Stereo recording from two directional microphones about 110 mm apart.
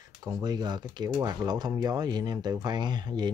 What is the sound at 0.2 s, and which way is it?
Speech, 40° right (ahead or behind).